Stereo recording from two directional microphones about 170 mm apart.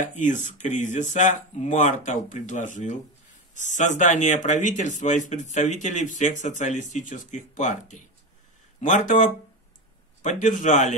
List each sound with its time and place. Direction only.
0.1 s speech: 45° left (ahead or behind)